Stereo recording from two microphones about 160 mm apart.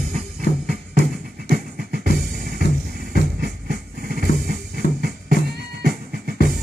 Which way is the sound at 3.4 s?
75° right (ahead or behind).